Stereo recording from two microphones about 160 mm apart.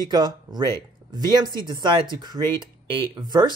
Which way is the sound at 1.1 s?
25° right (ahead or behind).